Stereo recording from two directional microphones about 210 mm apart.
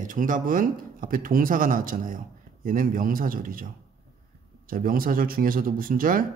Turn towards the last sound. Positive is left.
turn(degrees=-40)  # may be behind; listen again after turning